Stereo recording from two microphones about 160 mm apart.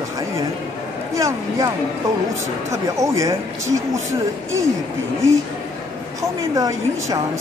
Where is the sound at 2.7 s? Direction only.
20° right (ahead or behind).